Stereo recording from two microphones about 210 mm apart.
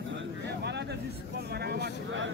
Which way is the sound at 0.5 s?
50° right (ahead or behind).